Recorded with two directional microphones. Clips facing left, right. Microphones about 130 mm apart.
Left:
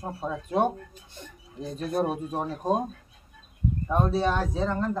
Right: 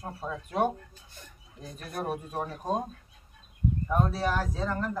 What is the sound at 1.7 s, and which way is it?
Speech, 25° left (ahead or behind).